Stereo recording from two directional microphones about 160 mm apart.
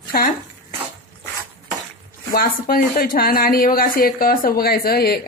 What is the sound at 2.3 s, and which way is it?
A woman's voice, 65° left (ahead or behind).